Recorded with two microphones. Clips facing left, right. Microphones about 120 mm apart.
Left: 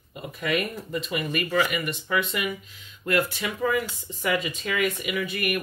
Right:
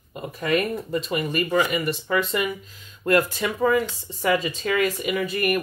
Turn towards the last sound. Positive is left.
turn(degrees=-35)  # may be behind; listen again after turning